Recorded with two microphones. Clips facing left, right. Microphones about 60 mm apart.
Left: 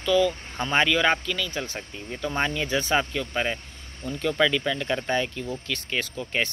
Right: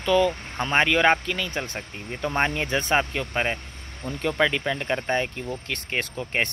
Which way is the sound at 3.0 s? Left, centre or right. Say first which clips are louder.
Right 1 dB; right.